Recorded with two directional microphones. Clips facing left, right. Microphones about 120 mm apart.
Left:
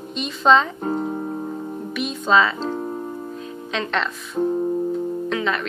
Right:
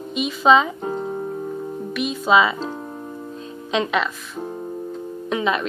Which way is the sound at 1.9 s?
Centre (ahead or behind).